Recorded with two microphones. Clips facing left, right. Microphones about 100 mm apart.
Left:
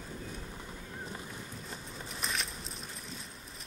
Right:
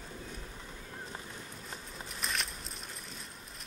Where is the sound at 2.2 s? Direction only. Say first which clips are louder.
Even; centre (ahead or behind).